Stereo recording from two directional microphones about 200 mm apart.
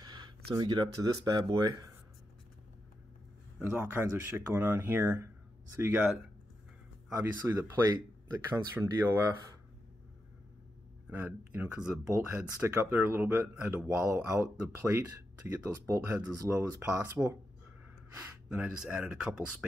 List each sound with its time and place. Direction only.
0.0 s a sound: 20° right (ahead or behind)
1.0 s speech: 20° right (ahead or behind)
3.5 s speech: 5° right (ahead or behind)
11.1 s speech: 10° right (ahead or behind)